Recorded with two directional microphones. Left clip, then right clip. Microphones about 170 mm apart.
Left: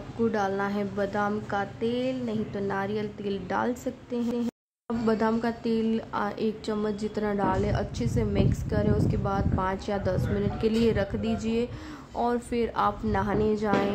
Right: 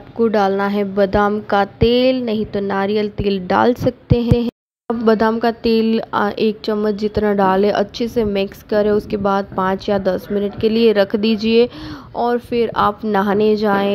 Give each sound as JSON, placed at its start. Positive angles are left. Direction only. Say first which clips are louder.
{"t": 0.2, "sound": "a woman's voice", "louder": "right 12 dB", "side_deg": -40}
{"t": 12.2, "sound": "a woman's voice", "louder": "right 10 dB", "side_deg": -35}